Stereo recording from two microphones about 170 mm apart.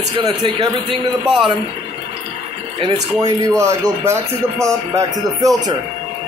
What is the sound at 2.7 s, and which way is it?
Speech, 25° right (ahead or behind).